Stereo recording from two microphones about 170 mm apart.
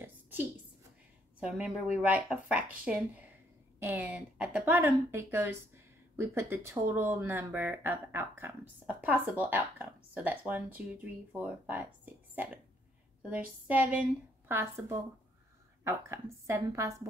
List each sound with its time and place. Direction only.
1.4 s speech: 5° right (ahead or behind)